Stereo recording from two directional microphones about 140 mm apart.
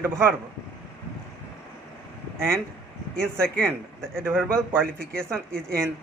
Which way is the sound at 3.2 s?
5° left (ahead or behind).